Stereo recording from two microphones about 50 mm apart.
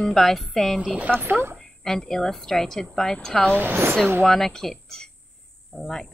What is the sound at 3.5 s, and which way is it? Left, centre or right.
Speech, right.